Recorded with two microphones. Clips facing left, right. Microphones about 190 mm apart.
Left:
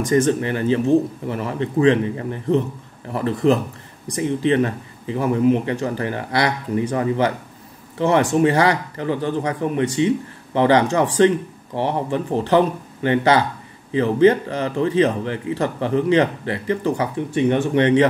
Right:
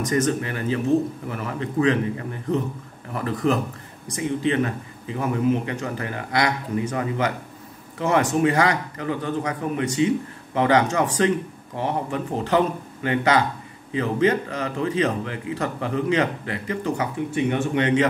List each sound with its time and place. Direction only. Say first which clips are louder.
0.0 s a man's voice: left 5 dB; 30° left (ahead or behind)